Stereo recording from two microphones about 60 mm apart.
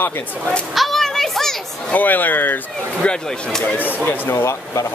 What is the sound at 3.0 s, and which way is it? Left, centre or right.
Speech, centre.